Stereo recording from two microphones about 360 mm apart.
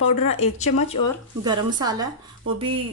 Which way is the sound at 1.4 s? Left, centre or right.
Centre.